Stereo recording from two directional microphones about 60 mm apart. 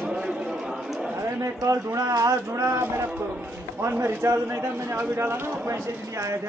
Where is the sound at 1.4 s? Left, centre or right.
Right.